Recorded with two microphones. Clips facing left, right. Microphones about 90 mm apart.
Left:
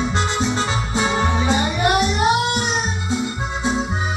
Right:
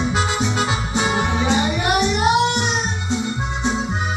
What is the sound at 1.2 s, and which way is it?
Music, centre (ahead or behind).